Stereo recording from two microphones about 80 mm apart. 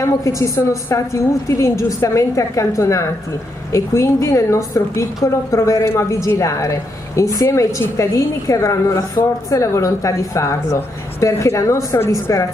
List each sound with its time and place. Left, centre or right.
0.0 s a woman's voice: left